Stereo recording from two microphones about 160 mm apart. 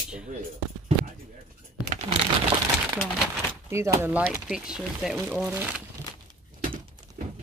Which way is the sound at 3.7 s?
20° right (ahead or behind).